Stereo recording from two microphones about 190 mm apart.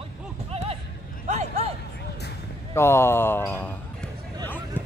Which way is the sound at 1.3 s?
35° right (ahead or behind).